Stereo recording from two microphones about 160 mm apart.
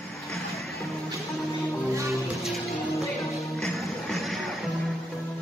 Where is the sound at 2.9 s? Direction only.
20° left (ahead or behind).